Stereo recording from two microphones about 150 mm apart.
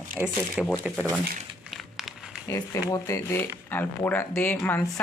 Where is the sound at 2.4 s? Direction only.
20° left (ahead or behind).